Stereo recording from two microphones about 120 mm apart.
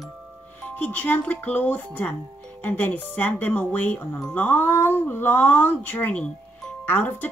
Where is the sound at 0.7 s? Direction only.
15° left (ahead or behind).